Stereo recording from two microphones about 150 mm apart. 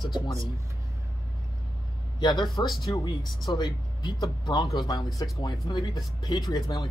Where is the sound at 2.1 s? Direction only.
30° left (ahead or behind).